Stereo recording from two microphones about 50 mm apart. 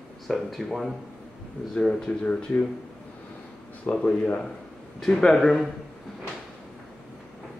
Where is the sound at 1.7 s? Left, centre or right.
Centre.